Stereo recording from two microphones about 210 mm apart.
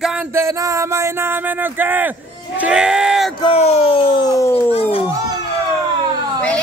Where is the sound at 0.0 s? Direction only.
5° right (ahead or behind).